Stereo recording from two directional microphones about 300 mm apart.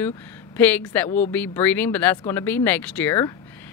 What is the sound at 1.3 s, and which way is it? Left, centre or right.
Speech, centre.